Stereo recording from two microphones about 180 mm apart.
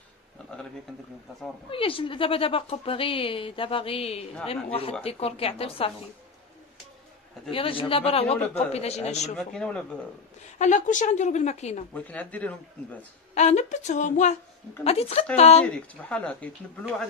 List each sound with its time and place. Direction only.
1.7 s speech: 30° left (ahead or behind)
7.5 s speech: 30° left (ahead or behind)
9.4 s speech: 5° left (ahead or behind)
10.6 s speech: 45° left (ahead or behind)
11.9 s speech: 10° left (ahead or behind)
13.3 s speech: 40° left (ahead or behind)
15.6 s speech: 5° left (ahead or behind)